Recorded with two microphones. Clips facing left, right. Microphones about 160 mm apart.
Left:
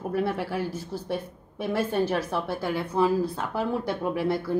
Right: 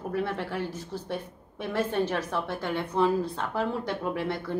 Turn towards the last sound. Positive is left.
turn(degrees=10)  # may be behind; listen again after turning